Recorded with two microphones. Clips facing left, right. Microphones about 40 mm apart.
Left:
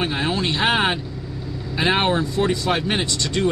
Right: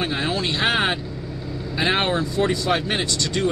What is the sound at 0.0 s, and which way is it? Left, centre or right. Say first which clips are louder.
Speech: left 1 dB; centre.